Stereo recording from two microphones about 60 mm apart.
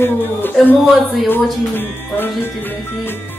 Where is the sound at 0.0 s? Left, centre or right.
Left.